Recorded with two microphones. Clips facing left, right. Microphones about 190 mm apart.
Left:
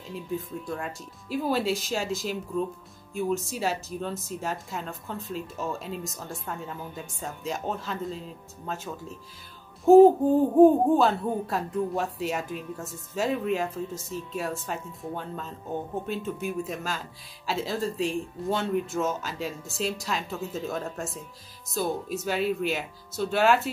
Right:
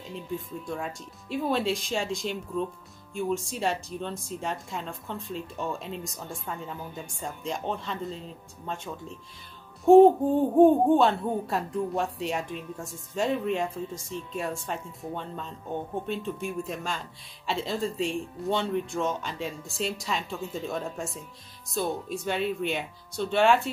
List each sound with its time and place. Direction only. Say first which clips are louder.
0.1 s speech: left 2 dB; centre (ahead or behind)